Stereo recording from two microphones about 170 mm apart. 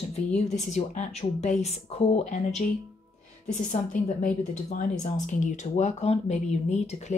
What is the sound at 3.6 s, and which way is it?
Speech, 50° left (ahead or behind).